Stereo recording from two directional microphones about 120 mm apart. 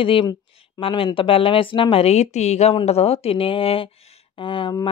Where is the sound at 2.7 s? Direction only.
60° left (ahead or behind).